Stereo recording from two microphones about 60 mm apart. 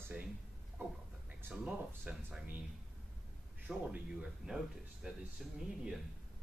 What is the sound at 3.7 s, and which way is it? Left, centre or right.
Speech, centre.